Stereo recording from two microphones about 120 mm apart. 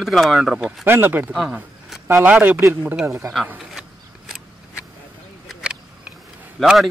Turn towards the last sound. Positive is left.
turn(degrees=0)  # may be behind; listen again after turning